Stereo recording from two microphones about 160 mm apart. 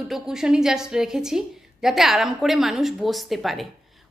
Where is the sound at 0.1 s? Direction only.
5° right (ahead or behind).